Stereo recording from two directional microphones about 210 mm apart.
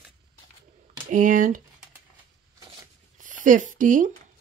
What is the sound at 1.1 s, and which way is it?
Speech, 40° right (ahead or behind).